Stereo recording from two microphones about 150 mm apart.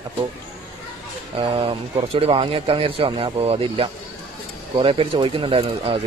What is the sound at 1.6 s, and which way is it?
Speech, 40° right (ahead or behind).